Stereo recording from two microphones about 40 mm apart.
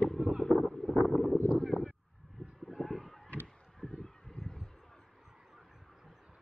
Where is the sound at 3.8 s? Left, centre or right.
Centre.